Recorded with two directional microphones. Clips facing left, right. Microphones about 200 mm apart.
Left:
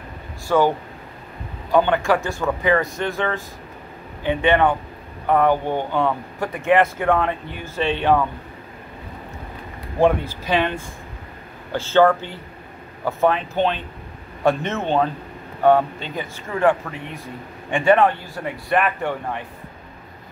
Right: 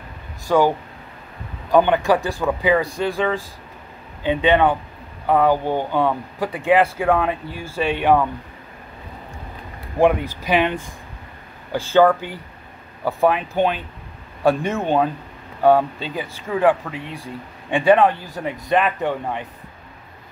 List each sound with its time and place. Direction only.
0.5 s speech: 10° right (ahead or behind)
9.9 s speech: 15° right (ahead or behind)